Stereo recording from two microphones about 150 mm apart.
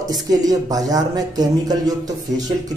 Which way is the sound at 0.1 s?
25° right (ahead or behind).